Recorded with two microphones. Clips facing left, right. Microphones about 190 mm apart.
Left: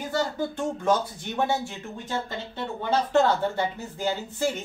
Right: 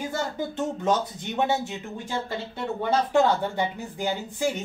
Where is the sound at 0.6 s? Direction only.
20° right (ahead or behind).